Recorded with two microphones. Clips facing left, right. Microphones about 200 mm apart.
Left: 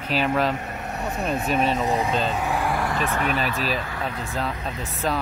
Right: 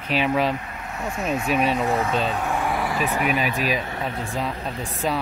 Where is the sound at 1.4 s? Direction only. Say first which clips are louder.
Right 1 dB; 5° right (ahead or behind).